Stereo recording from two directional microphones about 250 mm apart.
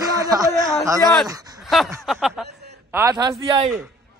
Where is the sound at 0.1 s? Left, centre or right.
Centre.